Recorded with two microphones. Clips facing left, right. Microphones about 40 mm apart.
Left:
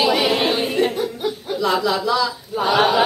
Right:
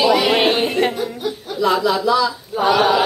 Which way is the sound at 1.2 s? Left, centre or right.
Centre.